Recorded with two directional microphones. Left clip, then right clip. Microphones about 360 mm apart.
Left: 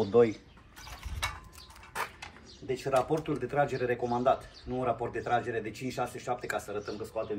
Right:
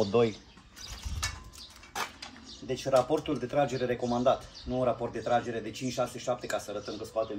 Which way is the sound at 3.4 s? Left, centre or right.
Centre.